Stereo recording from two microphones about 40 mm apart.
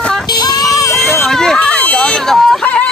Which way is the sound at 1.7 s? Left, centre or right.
Left.